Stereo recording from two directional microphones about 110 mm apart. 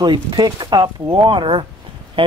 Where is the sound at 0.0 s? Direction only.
45° right (ahead or behind).